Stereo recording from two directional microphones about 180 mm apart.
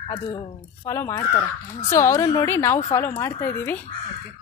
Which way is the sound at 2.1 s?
30° left (ahead or behind).